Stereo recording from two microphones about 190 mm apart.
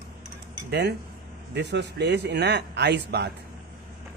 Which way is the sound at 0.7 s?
60° right (ahead or behind).